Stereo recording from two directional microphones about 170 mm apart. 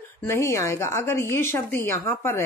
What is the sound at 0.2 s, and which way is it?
A woman's voice, 15° left (ahead or behind).